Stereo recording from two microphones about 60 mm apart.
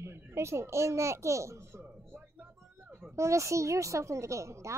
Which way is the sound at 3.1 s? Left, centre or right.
Right.